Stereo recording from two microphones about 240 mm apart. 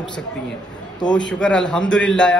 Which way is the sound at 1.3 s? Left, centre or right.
Centre.